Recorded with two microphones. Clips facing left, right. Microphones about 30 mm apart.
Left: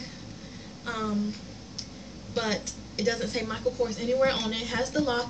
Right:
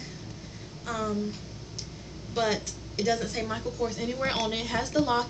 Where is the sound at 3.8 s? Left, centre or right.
Centre.